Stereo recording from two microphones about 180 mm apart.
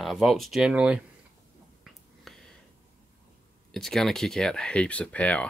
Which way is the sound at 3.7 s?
Centre (ahead or behind).